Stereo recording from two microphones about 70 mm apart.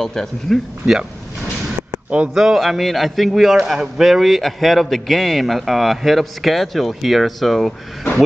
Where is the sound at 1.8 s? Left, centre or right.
Right.